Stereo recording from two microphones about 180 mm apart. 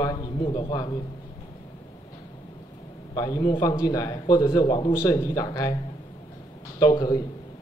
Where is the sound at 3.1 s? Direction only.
20° left (ahead or behind).